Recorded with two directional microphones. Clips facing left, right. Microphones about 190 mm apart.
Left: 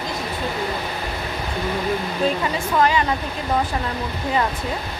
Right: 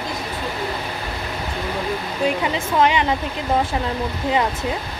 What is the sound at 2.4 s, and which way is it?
Speech, 20° right (ahead or behind).